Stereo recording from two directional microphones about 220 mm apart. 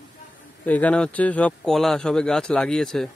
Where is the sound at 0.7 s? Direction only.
5° left (ahead or behind).